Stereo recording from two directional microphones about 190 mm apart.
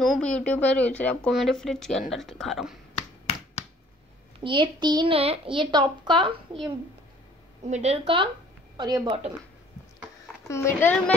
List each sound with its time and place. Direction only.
0.0 s speech: 5° left (ahead or behind)
4.4 s a woman's voice: 25° right (ahead or behind)
7.6 s a woman's voice: 35° right (ahead or behind)
10.5 s speech: 10° left (ahead or behind)